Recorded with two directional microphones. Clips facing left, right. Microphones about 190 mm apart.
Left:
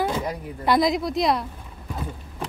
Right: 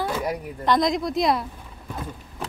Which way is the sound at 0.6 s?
5° left (ahead or behind).